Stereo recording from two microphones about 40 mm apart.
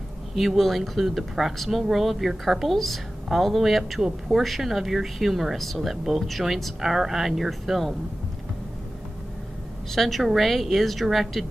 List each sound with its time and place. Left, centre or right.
0.4 s speech: centre
9.9 s speech: centre